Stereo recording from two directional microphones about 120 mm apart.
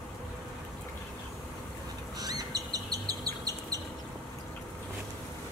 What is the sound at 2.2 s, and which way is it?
Bird, 30° right (ahead or behind).